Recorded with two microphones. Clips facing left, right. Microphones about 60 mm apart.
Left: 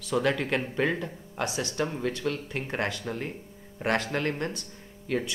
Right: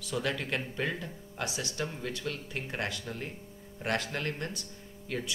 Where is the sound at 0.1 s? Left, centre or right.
Left.